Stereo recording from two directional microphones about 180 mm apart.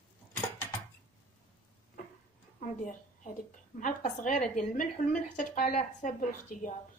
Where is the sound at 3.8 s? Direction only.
45° left (ahead or behind).